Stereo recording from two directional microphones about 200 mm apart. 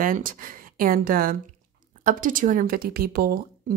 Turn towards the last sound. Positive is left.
turn(degrees=-50)  # may be behind; listen again after turning